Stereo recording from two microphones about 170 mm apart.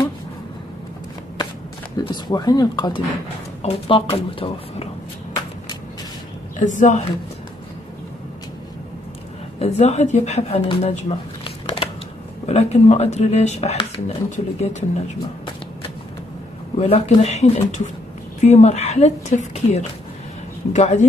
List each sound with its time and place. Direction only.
2.0 s speech: 25° left (ahead or behind)
6.6 s speech: 45° left (ahead or behind)
9.6 s speech: 40° left (ahead or behind)
16.7 s speech: 35° left (ahead or behind)